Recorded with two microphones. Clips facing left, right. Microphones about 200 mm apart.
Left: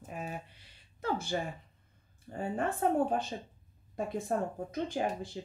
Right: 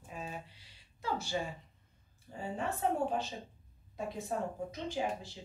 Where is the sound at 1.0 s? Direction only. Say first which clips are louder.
Left 3 dB; 55° left (ahead or behind).